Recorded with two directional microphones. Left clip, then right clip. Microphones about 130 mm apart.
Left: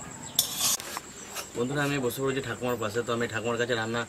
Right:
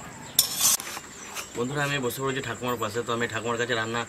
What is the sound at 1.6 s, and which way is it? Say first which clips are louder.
Speech: right 1 dB; 5° right (ahead or behind).